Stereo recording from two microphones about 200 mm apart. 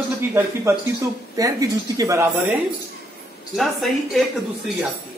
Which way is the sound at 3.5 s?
Centre (ahead or behind).